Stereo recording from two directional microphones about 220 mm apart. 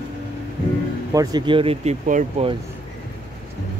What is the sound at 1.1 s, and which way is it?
Speech, 20° right (ahead or behind).